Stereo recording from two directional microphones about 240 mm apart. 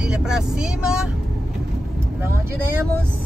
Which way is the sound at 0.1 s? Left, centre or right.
Centre.